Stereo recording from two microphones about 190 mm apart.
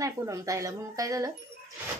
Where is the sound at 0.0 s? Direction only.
15° right (ahead or behind).